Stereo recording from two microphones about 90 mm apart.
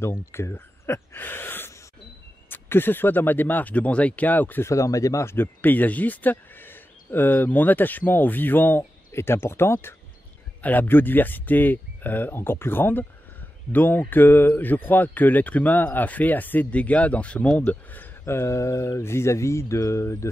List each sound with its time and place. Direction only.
0.0 s speech: 30° left (ahead or behind)
4.6 s speech: 35° left (ahead or behind)